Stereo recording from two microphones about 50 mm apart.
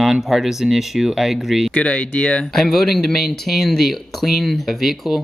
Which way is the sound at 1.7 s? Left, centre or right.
Left.